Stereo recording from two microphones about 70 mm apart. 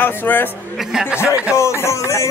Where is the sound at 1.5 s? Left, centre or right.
Left.